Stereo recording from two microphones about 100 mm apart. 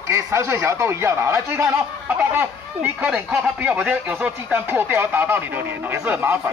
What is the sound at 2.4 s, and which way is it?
Speech, 15° right (ahead or behind).